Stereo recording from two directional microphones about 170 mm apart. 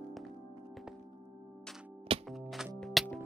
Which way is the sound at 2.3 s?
Centre (ahead or behind).